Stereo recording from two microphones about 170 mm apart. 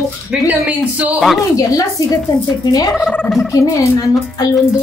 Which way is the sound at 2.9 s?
Centre (ahead or behind).